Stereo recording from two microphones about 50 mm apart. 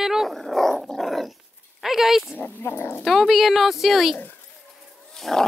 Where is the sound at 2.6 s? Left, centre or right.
Left.